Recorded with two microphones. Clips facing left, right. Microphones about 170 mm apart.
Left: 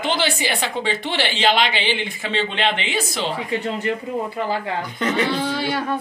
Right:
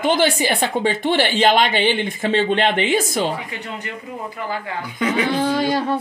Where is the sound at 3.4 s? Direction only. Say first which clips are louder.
Left 8 dB; 25° left (ahead or behind).